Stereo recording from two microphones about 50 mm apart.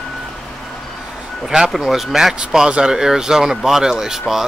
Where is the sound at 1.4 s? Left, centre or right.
Centre.